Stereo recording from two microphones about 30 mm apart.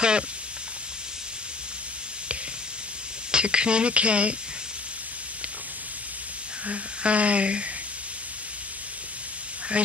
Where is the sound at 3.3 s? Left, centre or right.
Right.